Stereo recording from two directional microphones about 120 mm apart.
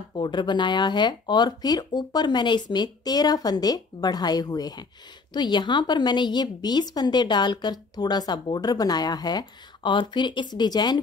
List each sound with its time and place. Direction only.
0.1 s speech: 40° left (ahead or behind)